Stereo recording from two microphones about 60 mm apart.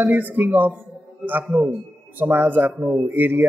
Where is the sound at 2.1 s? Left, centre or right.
Right.